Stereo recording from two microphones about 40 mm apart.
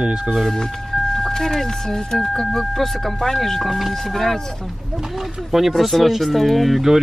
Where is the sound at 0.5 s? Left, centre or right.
Centre.